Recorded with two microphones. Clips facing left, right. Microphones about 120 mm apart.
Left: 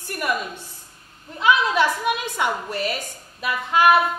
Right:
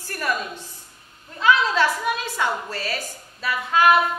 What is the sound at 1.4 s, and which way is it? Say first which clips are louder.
A woman's voice: even; 15° left (ahead or behind).